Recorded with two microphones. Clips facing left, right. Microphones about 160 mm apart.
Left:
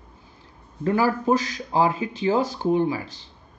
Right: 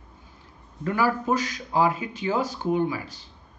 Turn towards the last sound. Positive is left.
turn(degrees=30)  # may be behind; listen again after turning